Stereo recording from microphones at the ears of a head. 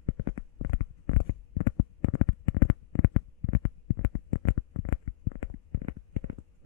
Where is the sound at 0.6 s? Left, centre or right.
Left.